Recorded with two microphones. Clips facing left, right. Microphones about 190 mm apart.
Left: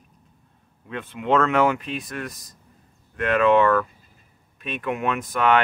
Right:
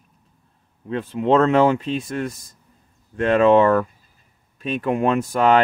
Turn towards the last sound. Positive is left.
turn(degrees=-30)  # may be behind; listen again after turning